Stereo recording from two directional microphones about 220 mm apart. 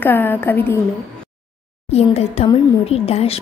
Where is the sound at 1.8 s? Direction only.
30° left (ahead or behind).